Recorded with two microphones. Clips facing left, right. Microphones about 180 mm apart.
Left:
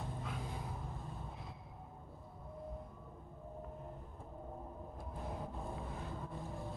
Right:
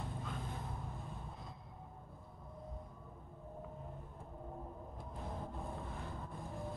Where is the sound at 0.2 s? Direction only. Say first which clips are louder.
Left 1 dB; 5° left (ahead or behind).